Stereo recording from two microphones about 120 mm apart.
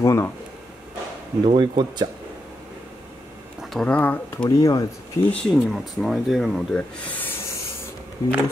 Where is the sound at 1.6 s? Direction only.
35° right (ahead or behind).